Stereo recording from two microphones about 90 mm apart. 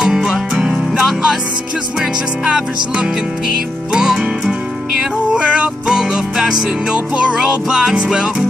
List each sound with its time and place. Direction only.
0.0 s music: 5° right (ahead or behind)